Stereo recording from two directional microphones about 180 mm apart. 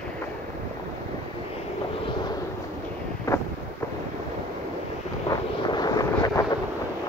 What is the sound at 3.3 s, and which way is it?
Wind noise, 15° left (ahead or behind).